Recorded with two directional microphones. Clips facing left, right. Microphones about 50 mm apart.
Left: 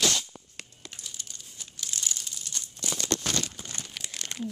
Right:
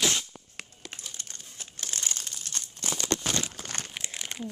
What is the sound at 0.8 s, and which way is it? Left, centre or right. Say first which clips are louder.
Crumpling: even; right.